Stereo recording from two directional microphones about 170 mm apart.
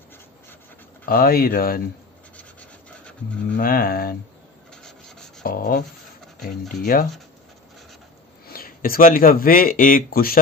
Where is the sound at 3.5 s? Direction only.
60° left (ahead or behind).